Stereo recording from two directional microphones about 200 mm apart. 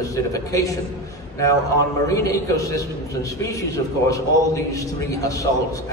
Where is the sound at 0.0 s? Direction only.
15° left (ahead or behind).